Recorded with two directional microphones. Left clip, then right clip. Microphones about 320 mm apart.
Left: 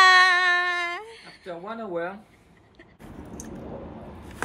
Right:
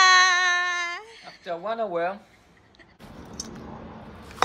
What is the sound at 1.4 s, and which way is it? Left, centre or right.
Speech, centre.